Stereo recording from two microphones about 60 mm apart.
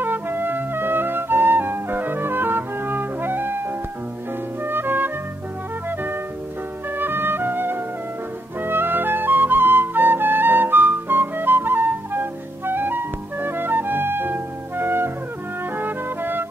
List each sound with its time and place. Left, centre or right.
0.0 s music: right
4.6 s music: right
7.0 s music: right
8.5 s flute: right
15.7 s music: right